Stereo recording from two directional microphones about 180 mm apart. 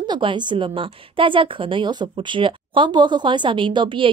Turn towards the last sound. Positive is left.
turn(degrees=-25)  # may be behind; listen again after turning